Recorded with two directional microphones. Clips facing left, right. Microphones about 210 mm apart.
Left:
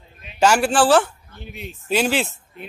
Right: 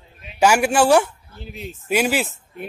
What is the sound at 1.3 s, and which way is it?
Speech, 35° right (ahead or behind).